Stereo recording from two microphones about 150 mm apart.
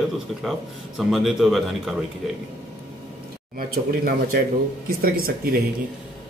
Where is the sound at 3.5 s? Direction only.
75° right (ahead or behind).